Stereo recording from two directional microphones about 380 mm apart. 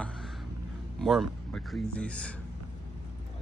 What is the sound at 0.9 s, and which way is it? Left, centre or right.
Speech, centre.